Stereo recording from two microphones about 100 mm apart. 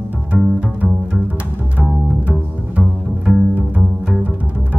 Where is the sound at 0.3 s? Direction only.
15° right (ahead or behind).